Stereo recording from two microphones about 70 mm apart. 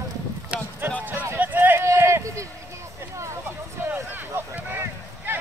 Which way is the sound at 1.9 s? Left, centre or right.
Right.